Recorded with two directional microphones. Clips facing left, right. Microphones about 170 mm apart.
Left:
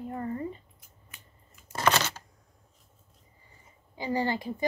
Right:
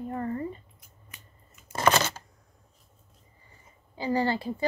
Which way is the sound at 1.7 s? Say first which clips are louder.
Right 2 dB; 50° right (ahead or behind).